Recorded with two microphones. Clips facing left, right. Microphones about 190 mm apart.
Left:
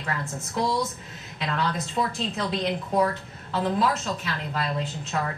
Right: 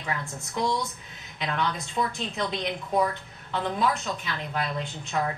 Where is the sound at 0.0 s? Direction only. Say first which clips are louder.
Left 2 dB; centre (ahead or behind).